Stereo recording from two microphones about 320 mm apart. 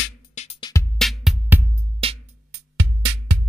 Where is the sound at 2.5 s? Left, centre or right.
Right.